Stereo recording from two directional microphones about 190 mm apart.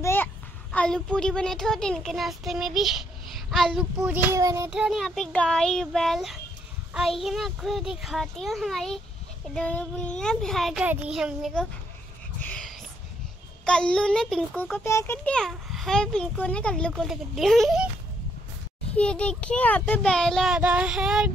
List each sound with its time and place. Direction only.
0.0 s a child's voice: 10° left (ahead or behind)
4.3 s child singing: 15° right (ahead or behind)
4.6 s a child's voice: 5° right (ahead or behind)
12.4 s a sound: 5° left (ahead or behind)
13.7 s a child's voice: 5° left (ahead or behind)
18.9 s a child's voice: 5° left (ahead or behind)